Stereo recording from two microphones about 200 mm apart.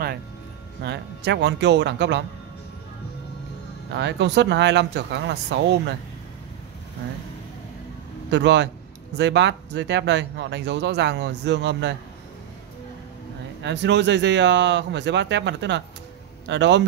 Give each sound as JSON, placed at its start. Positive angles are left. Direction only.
{"t": 0.8, "sound": "speech", "side_deg": -60}
{"t": 3.9, "sound": "speech", "side_deg": -60}
{"t": 8.3, "sound": "speech", "side_deg": -60}
{"t": 13.6, "sound": "speech", "side_deg": -60}